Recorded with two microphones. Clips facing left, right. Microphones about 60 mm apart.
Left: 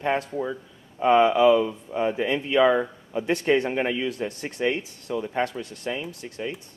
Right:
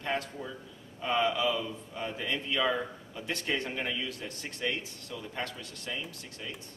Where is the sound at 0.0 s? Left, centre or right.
Left.